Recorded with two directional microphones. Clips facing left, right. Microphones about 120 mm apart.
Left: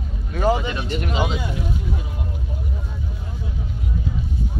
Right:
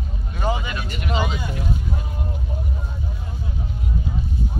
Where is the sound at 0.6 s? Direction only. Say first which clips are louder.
Left 5 dB; 25° left (ahead or behind).